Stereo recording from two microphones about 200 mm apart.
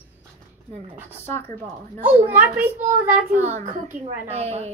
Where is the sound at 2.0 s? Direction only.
10° right (ahead or behind).